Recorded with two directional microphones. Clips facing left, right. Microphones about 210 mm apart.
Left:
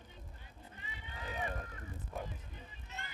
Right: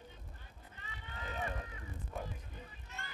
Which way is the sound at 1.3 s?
5° left (ahead or behind).